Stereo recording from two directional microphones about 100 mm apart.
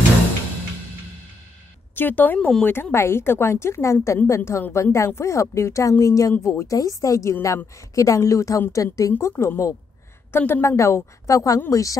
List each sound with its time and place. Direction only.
2.0 s speech: 20° left (ahead or behind)
2.7 s a woman's voice: 25° left (ahead or behind)
9.1 s a woman's voice: 25° left (ahead or behind)